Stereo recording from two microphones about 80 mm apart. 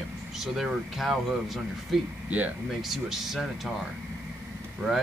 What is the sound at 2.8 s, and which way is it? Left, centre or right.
Speech, centre.